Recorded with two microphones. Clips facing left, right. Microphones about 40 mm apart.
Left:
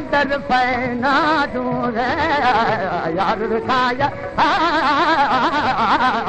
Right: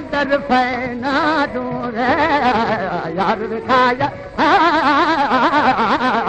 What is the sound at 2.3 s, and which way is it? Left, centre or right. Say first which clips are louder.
Speech: right 1 dB; centre.